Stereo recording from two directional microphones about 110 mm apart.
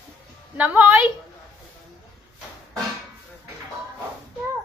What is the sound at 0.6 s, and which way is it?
Speech, 15° right (ahead or behind).